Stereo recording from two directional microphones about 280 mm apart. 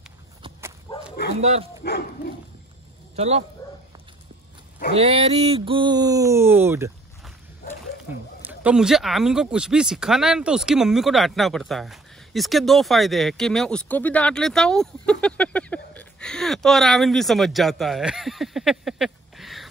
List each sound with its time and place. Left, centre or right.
0.4 s dog: centre
1.4 s speech: right
1.8 s speech: left
3.2 s speech: right
4.9 s speech: right
7.6 s a sound: left
8.5 s speech: centre